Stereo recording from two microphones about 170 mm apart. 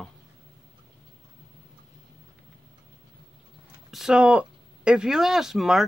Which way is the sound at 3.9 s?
5° right (ahead or behind).